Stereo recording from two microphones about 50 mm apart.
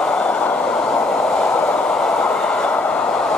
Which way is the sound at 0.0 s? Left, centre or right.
Centre.